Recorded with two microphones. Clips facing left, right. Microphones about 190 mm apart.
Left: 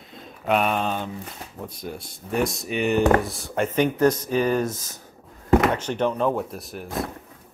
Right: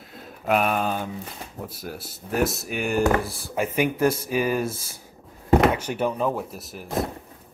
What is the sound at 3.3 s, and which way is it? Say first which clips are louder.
Speech: left 2 dB; 30° right (ahead or behind).